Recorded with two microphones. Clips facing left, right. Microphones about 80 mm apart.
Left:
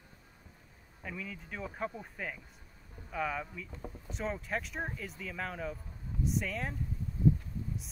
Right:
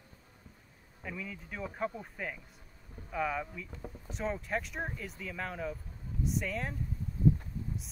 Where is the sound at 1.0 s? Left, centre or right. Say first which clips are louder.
Right 1 dB; centre.